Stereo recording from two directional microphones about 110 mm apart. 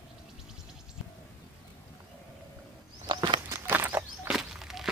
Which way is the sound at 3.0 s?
45° right (ahead or behind).